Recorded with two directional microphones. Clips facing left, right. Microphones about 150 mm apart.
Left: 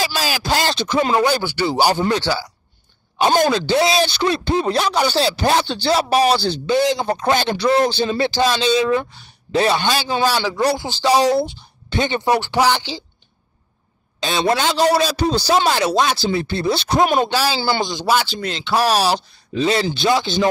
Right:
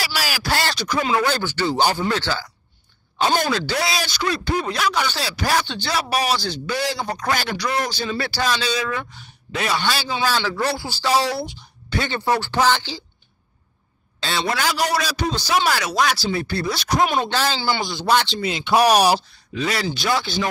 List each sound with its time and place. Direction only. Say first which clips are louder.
0.0 s speech: left 4 dB; 20° left (ahead or behind)
14.5 s speech: left 6 dB; 25° left (ahead or behind)
17.2 s speech: left 3 dB; 10° left (ahead or behind)
17.6 s a man's voice: left 4 dB; 40° left (ahead or behind)
18.0 s speech: right 1 dB; 5° left (ahead or behind)
18.4 s speech: right 2 dB; 10° right (ahead or behind)
19.5 s speech: left 6 dB; 25° left (ahead or behind)